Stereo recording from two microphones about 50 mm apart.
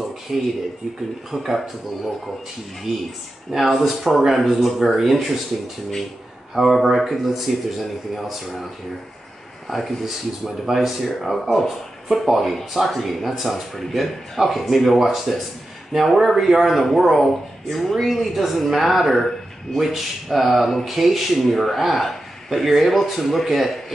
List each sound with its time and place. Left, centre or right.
0.3 s speech: centre
2.9 s speech: centre
6.5 s speech: centre
9.7 s speech: centre